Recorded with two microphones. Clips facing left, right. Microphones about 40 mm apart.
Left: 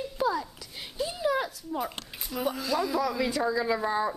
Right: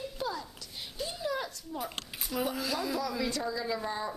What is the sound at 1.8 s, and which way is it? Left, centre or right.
A woman's voice, centre.